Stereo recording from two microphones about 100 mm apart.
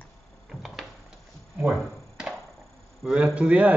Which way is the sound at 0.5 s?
Centre (ahead or behind).